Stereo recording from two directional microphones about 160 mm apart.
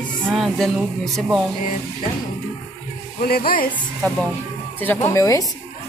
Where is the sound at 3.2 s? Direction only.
70° left (ahead or behind).